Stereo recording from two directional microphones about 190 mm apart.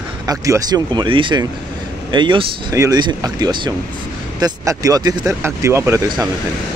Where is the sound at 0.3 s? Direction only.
20° right (ahead or behind).